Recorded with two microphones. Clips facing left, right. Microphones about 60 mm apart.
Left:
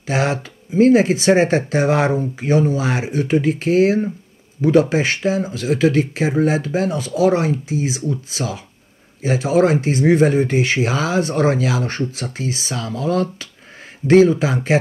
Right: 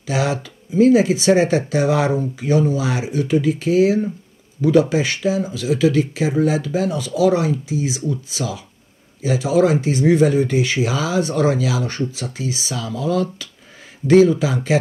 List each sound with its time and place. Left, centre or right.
0.0 s speech: left